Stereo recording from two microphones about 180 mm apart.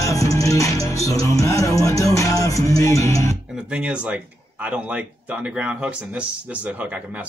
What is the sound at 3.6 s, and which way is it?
Speech, 5° right (ahead or behind).